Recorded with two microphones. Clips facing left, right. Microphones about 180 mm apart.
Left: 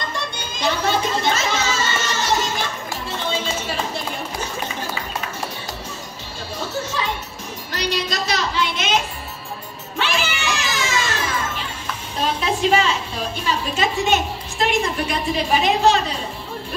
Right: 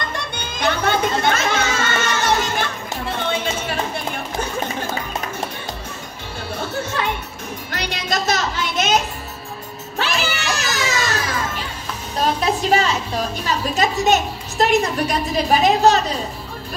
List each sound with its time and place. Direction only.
0.4 s music: 55° right (ahead or behind)
7.7 s a sound: 55° right (ahead or behind)
9.9 s music: 40° right (ahead or behind)
13.7 s a woman's voice: 40° right (ahead or behind)